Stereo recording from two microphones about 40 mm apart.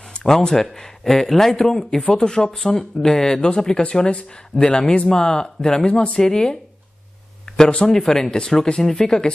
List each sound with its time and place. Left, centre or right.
0.2 s speech: centre
2.0 s speech: left
5.9 s speech: left
6.2 s speech: centre
7.5 s speech: centre